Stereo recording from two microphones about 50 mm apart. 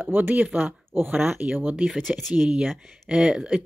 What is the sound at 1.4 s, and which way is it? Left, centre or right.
Speech, right.